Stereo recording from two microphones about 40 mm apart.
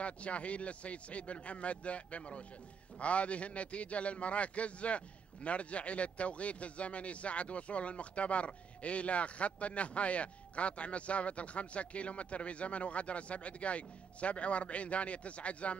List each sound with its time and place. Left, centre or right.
0.0 s a man's voice: left